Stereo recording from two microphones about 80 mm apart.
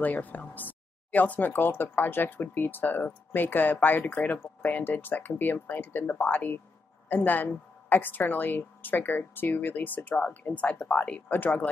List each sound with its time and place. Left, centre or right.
0.0 s speech: left